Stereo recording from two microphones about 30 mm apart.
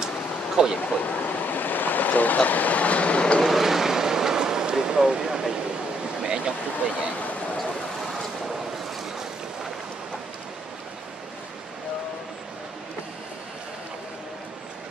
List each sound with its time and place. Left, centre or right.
0.6 s speech: right
1.0 s vehicle: left
2.3 s speech: left
3.4 s vehicle: centre; by 5.4 s right
6.2 s a sound: right